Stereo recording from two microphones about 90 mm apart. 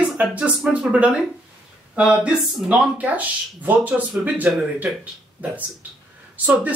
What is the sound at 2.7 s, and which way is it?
Speech, 15° right (ahead or behind).